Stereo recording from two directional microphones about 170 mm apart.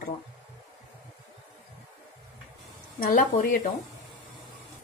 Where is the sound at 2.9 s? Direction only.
55° left (ahead or behind).